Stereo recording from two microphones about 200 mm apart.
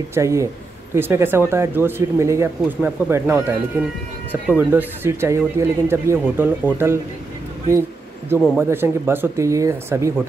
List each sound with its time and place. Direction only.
0.1 s speech: 15° right (ahead or behind)
8.5 s speech: 10° right (ahead or behind)